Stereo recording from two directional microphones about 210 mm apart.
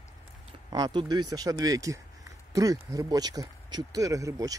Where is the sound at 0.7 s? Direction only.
20° right (ahead or behind).